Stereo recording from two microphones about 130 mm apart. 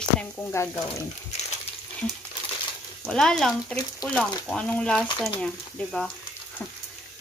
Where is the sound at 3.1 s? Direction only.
5° left (ahead or behind).